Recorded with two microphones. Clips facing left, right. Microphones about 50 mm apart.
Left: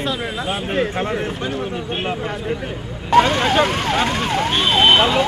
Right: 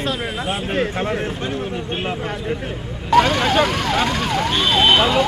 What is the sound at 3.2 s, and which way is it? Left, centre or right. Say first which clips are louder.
Speech: left 1 dB; left.